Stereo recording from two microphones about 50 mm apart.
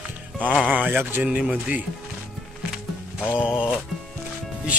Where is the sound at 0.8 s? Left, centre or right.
Right.